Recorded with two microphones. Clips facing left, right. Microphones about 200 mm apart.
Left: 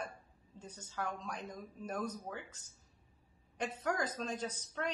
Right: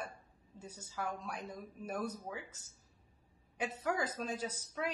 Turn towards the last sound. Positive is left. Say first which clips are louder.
# even
turn(degrees=-5)  # may be behind; listen again after turning